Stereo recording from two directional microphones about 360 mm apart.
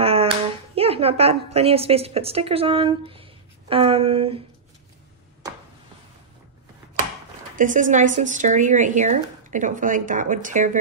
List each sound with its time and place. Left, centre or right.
0.0 s clapping: centre
0.7 s a woman's voice: centre
7.5 s speech: right